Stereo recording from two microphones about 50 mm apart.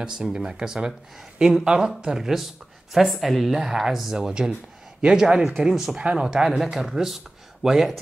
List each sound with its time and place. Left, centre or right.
0.0 s speech: centre